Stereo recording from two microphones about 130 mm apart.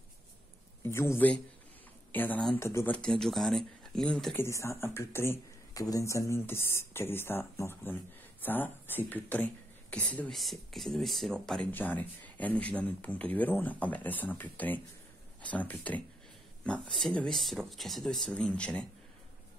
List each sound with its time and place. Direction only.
0.8 s a man's voice: 20° left (ahead or behind)
3.0 s speech: 5° left (ahead or behind)
4.4 s speech: 20° left (ahead or behind)